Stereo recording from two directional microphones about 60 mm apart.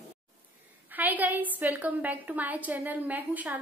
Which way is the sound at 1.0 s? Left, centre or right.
Right.